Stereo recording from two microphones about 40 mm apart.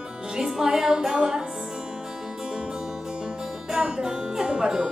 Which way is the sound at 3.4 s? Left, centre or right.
Centre.